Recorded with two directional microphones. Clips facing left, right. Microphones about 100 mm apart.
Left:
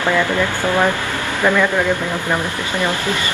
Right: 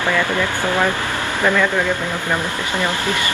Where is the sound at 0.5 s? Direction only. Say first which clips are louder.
Left 2 dB; 20° right (ahead or behind).